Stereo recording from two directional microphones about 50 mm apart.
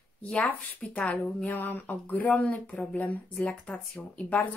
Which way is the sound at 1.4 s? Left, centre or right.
Left.